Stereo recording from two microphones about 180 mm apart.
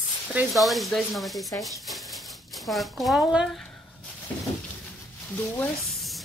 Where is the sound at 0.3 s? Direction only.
5° right (ahead or behind).